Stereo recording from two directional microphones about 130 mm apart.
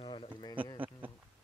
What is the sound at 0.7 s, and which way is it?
Speech, 15° right (ahead or behind).